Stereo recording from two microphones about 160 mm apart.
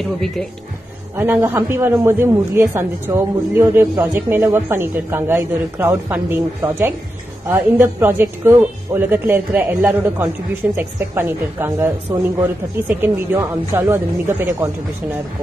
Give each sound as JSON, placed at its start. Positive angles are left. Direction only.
{"t": 1.1, "sound": "a man's voice", "side_deg": -15}